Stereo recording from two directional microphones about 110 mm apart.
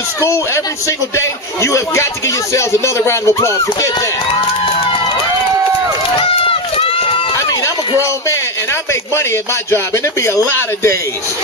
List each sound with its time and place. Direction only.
0.8 s a man's voice: 25° left (ahead or behind)
6.1 s run: 55° left (ahead or behind)
7.3 s a sound: 25° left (ahead or behind)
9.1 s a man's voice: 25° left (ahead or behind)